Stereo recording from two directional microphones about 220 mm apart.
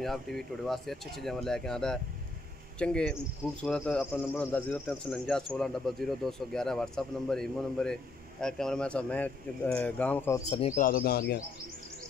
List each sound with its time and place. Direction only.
0.0 s speech: centre (ahead or behind)
10.8 s speech: 40° left (ahead or behind)